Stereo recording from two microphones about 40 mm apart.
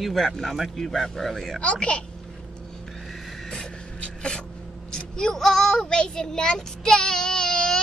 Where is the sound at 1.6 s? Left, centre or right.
Left.